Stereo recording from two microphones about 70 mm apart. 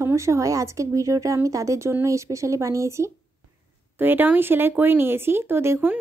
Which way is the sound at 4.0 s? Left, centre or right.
Right.